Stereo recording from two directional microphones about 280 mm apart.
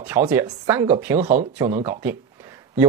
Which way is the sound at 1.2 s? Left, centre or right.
Right.